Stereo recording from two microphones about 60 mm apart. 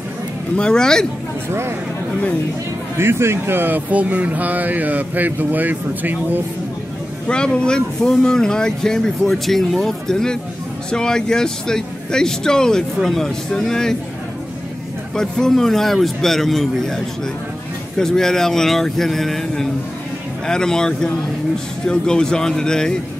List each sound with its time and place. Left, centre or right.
0.6 s speech: centre
1.5 s speech: right
3.0 s speech: right
7.2 s speech: centre
15.1 s a man's voice: centre